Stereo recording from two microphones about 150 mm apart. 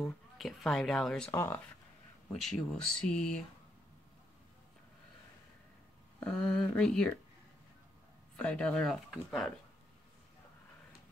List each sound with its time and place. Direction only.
0.0 s speech: centre (ahead or behind)
1.3 s speech: 20° left (ahead or behind)
2.4 s speech: 5° left (ahead or behind)
6.1 s speech: 5° left (ahead or behind)
8.4 s speech: 10° left (ahead or behind)